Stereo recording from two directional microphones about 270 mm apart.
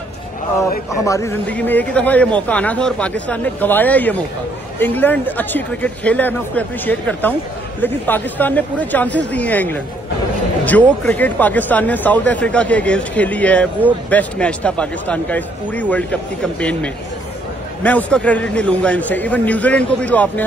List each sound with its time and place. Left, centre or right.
0.6 s a man's voice: centre